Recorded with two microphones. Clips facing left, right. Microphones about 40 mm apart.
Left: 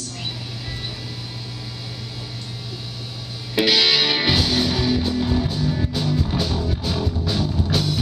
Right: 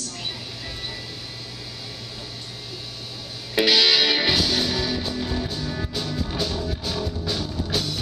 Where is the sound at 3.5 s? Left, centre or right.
Centre.